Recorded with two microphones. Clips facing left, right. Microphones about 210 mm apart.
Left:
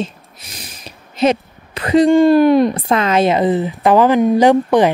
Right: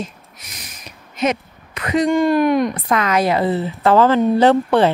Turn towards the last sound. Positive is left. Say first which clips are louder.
# left 2 dB
turn(degrees=15)  # may be behind; listen again after turning